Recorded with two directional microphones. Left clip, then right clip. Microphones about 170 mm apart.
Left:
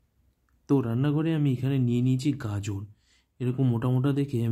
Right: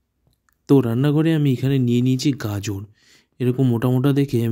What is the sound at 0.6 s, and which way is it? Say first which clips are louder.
Speech: right 9 dB; 35° right (ahead or behind).